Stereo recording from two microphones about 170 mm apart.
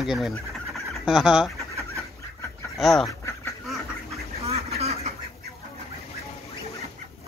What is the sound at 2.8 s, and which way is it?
Speech, centre (ahead or behind).